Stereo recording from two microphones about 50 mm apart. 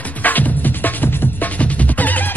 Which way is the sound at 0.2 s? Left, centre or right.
Left.